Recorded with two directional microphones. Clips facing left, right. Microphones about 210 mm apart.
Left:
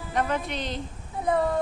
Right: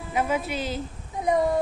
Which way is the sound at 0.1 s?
5° right (ahead or behind).